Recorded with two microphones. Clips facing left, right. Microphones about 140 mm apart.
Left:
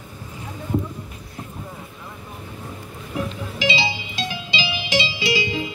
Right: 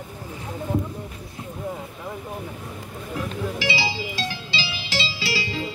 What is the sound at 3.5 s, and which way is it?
Music, 20° left (ahead or behind).